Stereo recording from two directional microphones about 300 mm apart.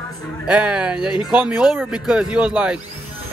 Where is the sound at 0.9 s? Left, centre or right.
Centre.